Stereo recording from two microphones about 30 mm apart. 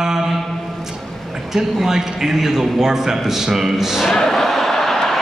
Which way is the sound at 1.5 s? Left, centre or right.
Centre.